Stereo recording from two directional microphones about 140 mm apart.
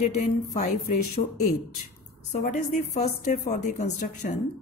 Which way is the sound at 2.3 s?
65° left (ahead or behind).